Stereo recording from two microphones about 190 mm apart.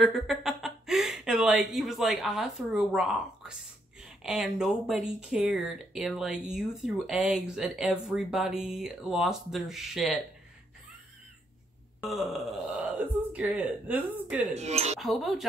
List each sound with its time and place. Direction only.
0.0 s speech: centre (ahead or behind)
12.1 s speech: centre (ahead or behind)
14.5 s speech: 35° right (ahead or behind)
15.0 s speech: centre (ahead or behind)